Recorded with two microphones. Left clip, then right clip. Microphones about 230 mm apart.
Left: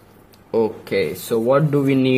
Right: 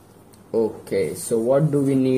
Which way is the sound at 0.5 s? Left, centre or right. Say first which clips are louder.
Left 2 dB; left.